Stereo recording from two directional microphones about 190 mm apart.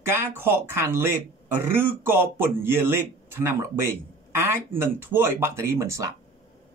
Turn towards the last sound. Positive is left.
turn(degrees=-15)  # may be behind; listen again after turning